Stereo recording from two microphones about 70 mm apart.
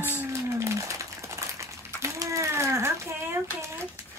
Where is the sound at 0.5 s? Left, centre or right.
Right.